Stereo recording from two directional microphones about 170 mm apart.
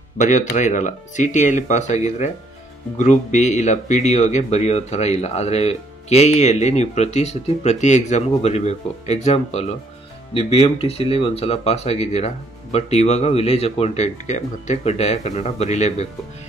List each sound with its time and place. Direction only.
0.2 s speech: 45° left (ahead or behind)